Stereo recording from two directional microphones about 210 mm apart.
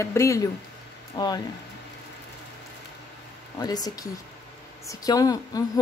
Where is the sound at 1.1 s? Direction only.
20° left (ahead or behind).